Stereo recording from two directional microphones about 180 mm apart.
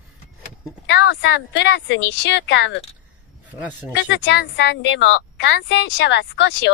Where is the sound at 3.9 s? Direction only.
75° left (ahead or behind).